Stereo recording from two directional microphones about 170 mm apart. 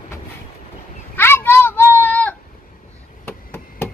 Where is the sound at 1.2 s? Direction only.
15° left (ahead or behind).